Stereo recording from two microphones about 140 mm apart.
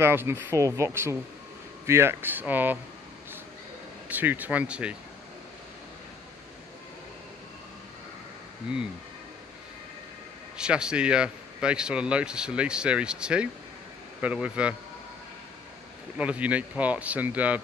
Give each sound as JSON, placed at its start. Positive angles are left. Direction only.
{"t": 0.0, "sound": "speech", "side_deg": -15}
{"t": 4.1, "sound": "speech", "side_deg": -10}
{"t": 10.6, "sound": "speech", "side_deg": -5}
{"t": 16.2, "sound": "speech", "side_deg": -10}